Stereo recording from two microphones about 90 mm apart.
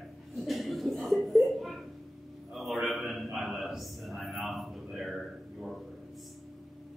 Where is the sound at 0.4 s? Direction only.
Centre (ahead or behind).